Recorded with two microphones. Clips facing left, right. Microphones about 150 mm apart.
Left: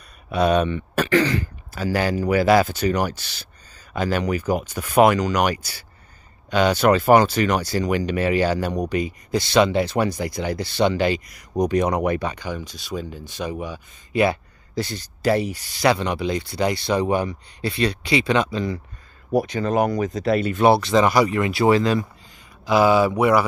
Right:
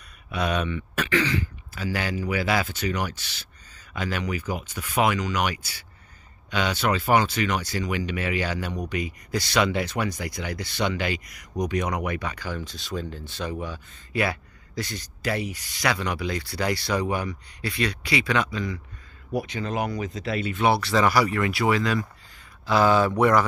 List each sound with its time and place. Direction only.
0.3 s speech: 35° left (ahead or behind)
12.4 s speech: 15° left (ahead or behind); by 18.8 s 30° left (ahead or behind)
19.3 s speech: 40° left (ahead or behind)
20.7 s speech: 20° left (ahead or behind)
22.7 s speech: 10° left (ahead or behind)